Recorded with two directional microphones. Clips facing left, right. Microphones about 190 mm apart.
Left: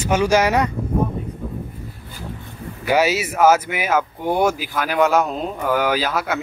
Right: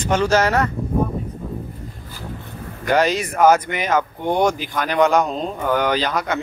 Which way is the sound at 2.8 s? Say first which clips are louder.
Even; 5° left (ahead or behind).